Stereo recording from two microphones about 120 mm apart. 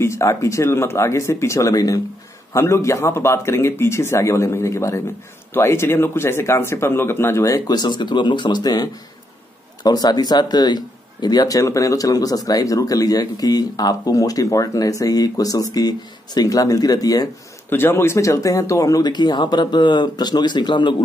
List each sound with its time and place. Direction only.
0.0 s speech: 25° left (ahead or behind)
9.8 s speech: 35° left (ahead or behind)
17.6 s speech: 20° left (ahead or behind); by 20.9 s 40° left (ahead or behind)